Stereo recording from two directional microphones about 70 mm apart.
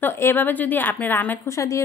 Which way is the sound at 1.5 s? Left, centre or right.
Left.